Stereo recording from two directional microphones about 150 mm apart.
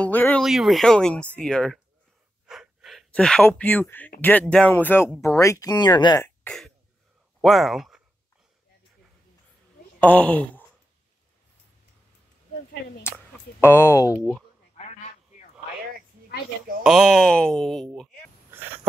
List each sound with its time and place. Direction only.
0.0 s a sound: 10° left (ahead or behind)
0.4 s speech: centre (ahead or behind)
2.4 s gasp: 5° right (ahead or behind)
4.2 s speech: 10° left (ahead or behind); by 6.2 s 30° left (ahead or behind)
6.2 s throat clearing: 5° left (ahead or behind)
7.4 s speech: centre (ahead or behind)
9.9 s speech: 10° left (ahead or behind)
13.6 s speech: 15° left (ahead or behind)
16.8 s speech: centre (ahead or behind)